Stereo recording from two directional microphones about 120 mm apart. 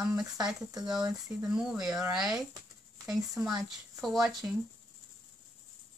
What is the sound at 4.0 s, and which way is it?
Speech, centre (ahead or behind).